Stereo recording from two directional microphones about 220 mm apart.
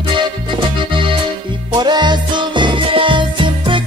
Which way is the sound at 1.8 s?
20° right (ahead or behind).